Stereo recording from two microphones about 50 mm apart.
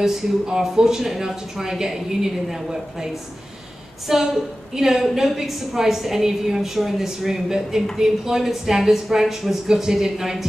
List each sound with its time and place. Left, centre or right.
0.0 s speech: centre
4.1 s a woman's voice: centre